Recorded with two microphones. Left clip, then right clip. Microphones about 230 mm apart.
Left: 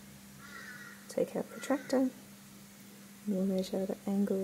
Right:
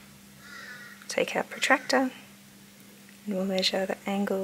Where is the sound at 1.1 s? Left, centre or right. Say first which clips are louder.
Right 6 dB; centre.